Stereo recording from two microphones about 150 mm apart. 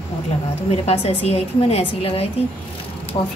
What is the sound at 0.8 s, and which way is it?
Speech, 40° left (ahead or behind).